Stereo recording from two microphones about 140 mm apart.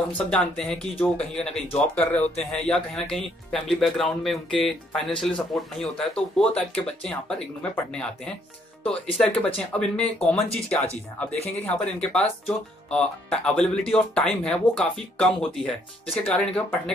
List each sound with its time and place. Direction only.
0.3 s speech: 5° left (ahead or behind)